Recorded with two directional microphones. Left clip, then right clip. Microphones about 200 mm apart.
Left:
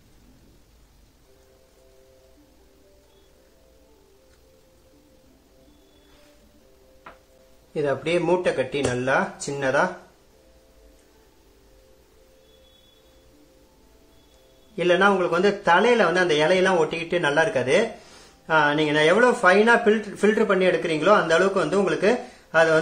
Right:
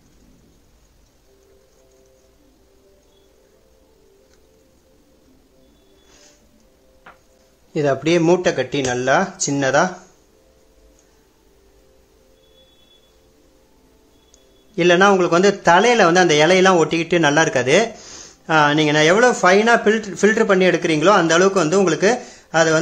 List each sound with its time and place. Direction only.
7.7 s speech: 50° right (ahead or behind)
14.8 s a man's voice: 50° right (ahead or behind)